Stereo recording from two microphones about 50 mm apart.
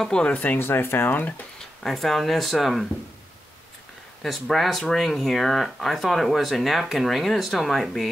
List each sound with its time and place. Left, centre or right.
0.0 s speech: centre
0.3 s speech: left
0.6 s speech: left
1.8 s speech: centre
4.2 s speech: centre